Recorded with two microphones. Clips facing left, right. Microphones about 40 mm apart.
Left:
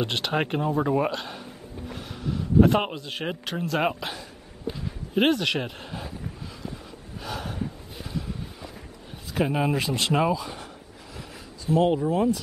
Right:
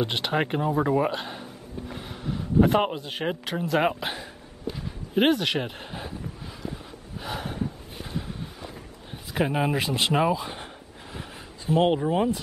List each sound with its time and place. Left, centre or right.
0.0 s speech: centre
1.1 s a sound: centre
3.1 s speech: centre
4.0 s speech: right
5.1 s a sound: centre
7.2 s gasp: centre
9.3 s speech: centre
9.8 s speech: right
11.1 s a sound: right